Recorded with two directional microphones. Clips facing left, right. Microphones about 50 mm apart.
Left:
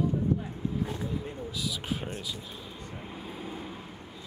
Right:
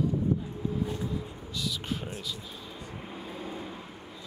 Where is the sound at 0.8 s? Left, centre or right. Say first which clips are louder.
Even; centre.